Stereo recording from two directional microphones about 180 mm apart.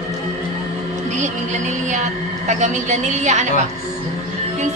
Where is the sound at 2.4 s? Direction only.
40° right (ahead or behind).